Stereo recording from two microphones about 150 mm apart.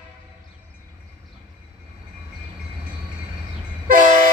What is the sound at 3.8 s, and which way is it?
Vehicle, 60° right (ahead or behind).